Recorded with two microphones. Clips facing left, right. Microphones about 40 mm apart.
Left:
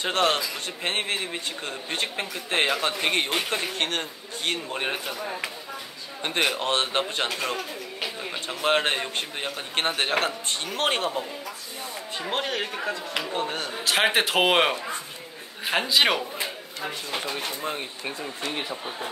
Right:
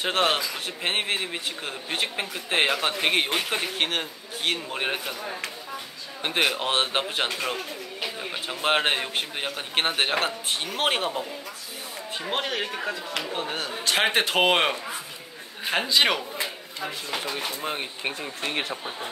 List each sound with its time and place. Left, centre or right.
0.0 s a man's voice: centre
5.2 s speech: centre
6.2 s a man's voice: centre
18.4 s speech: right